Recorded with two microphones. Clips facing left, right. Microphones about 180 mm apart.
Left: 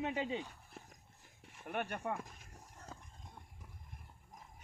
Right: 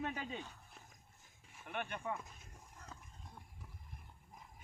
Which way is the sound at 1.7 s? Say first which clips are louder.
Left 3 dB; 45° left (ahead or behind).